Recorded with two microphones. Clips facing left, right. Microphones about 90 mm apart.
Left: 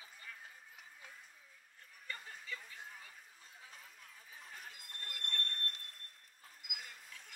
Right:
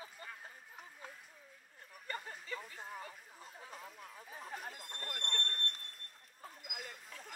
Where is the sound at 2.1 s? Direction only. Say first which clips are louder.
Right 4 dB; 40° right (ahead or behind).